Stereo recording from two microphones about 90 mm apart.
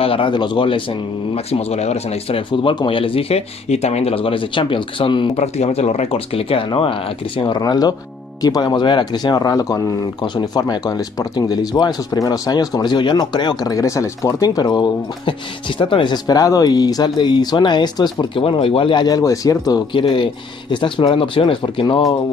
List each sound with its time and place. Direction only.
0.0 s speech: 80° left
2.2 s speech: 80° left; by 3.0 s 60° left (ahead or behind)
3.0 s speech: 90° left; by 5.3 s 70° left (ahead or behind)
6.1 s speech: 90° left; by 9.8 s 40° left (ahead or behind)
10.2 s speech: 50° left (ahead or behind)
15.8 s speech: 65° left (ahead or behind)
16.3 s speech: 45° left (ahead or behind)
18.4 s speech: 90° left; by 19.0 s 75° left (ahead or behind)
19.0 s speech: 40° left (ahead or behind)
19.9 s speech: 70° left (ahead or behind)